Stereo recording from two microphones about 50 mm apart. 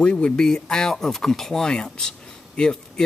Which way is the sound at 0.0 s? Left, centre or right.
Left.